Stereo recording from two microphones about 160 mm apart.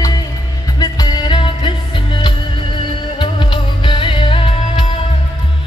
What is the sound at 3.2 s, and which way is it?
Music, 30° left (ahead or behind).